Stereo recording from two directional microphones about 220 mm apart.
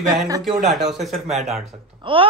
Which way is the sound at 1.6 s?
25° right (ahead or behind).